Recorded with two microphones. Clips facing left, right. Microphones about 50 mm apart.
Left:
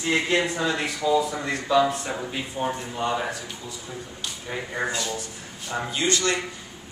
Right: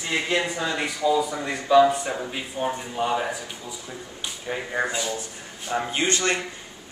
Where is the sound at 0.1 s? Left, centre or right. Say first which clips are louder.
Left 2 dB; centre.